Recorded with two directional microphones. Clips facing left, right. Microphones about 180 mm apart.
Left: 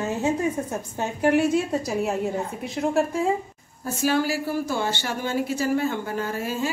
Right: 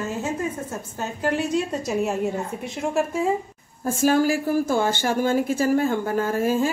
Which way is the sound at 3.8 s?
45° right (ahead or behind).